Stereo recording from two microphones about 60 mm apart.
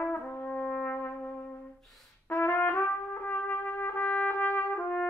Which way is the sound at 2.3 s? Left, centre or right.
Left.